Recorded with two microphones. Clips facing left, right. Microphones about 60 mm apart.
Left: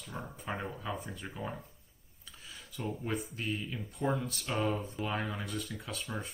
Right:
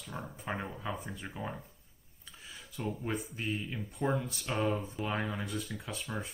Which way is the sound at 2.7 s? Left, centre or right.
Centre.